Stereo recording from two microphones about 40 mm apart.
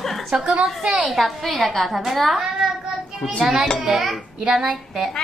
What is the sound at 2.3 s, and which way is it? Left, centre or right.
Child singing, centre.